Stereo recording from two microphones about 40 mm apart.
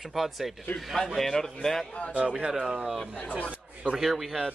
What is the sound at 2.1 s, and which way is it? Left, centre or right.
Speech, right.